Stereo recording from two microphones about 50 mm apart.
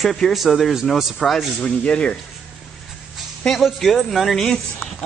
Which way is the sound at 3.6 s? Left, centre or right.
Centre.